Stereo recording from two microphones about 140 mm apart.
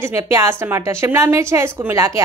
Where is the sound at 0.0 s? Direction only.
20° right (ahead or behind).